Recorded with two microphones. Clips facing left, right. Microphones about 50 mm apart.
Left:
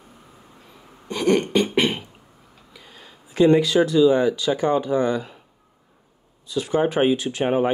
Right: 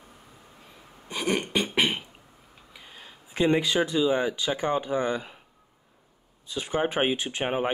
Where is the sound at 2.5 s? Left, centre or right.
Centre.